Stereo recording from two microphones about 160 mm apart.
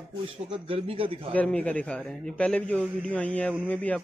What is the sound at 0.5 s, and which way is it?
Speech, 35° right (ahead or behind).